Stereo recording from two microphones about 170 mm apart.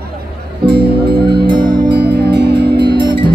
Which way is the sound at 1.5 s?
25° right (ahead or behind).